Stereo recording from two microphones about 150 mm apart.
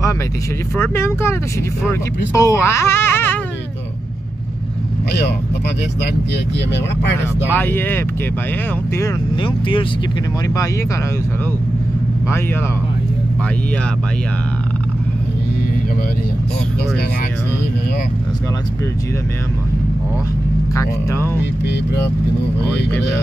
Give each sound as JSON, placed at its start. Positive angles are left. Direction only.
{"t": 0.7, "sound": "speech", "side_deg": 15}
{"t": 7.5, "sound": "speech", "side_deg": 15}
{"t": 9.4, "sound": "speech", "side_deg": 35}
{"t": 20.7, "sound": "speech", "side_deg": 15}